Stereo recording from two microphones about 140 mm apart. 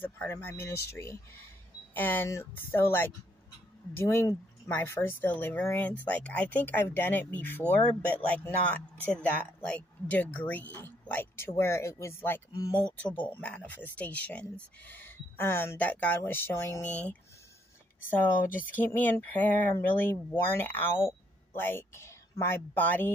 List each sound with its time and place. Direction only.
0.0 s speech: 15° left (ahead or behind)
18.8 s a woman's voice: 10° left (ahead or behind)